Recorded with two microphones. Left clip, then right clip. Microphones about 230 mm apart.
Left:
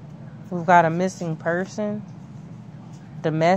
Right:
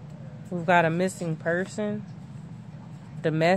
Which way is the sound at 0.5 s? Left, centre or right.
Centre.